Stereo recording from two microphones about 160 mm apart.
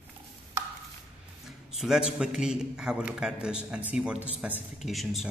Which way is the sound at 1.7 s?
5° right (ahead or behind).